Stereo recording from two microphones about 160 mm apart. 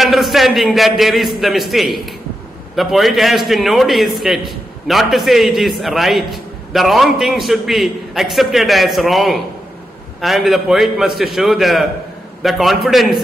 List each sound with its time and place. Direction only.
0.0 s a man's voice: centre (ahead or behind)